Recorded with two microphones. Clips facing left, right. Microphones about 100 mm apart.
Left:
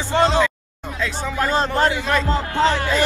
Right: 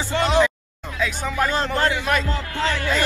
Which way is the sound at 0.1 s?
30° left (ahead or behind).